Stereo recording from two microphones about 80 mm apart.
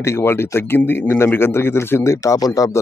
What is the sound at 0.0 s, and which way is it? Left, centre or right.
A man's voice, left.